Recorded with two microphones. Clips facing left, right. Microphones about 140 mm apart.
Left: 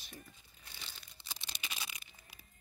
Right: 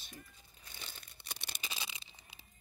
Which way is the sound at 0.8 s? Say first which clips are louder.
Right 3 dB; 50° right (ahead or behind).